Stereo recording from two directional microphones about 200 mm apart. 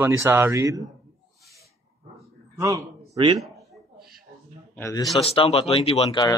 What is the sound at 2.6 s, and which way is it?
Speech, 15° right (ahead or behind).